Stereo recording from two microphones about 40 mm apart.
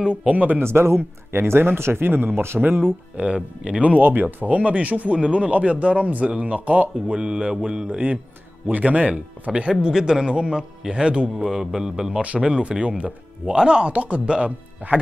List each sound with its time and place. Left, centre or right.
0.0 s speech: right
0.3 s speech: right
0.6 s speech: right
2.5 s a man's voice: centre
3.3 s speech: right
4.0 s speech: right
8.6 s speech: right
9.6 s a man's voice: right
12.1 s speech: right
13.6 s speech: right